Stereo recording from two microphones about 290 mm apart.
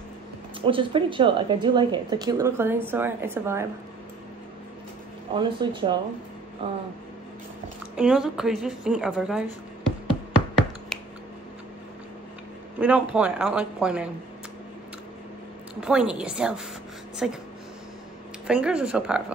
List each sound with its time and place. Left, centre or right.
0.6 s a woman's voice: centre
5.3 s a woman's voice: centre
7.9 s a woman's voice: centre
10.9 s a sound: centre
12.8 s a woman's voice: centre
15.7 s a woman's voice: centre
18.5 s a woman's voice: centre